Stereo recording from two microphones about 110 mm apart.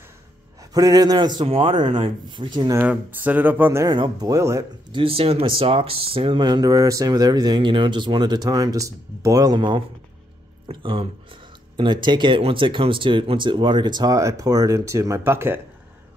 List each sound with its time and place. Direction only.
0.7 s speech: 35° right (ahead or behind)
1.4 s speech: 60° right (ahead or behind)
1.7 s speech: 40° right (ahead or behind)
2.9 s speech: 15° right (ahead or behind)
3.8 s speech: 40° right (ahead or behind)
4.9 s speech: 60° right (ahead or behind); by 15.6 s 20° right (ahead or behind)